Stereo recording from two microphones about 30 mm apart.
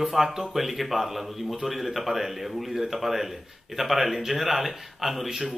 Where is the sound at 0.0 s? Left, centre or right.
Centre.